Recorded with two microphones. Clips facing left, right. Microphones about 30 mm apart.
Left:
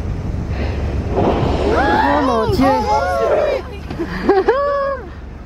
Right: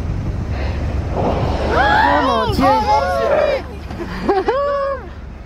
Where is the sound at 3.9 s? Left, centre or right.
Centre.